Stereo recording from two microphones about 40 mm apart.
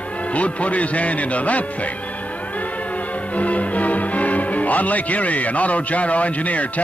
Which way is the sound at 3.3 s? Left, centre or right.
Left.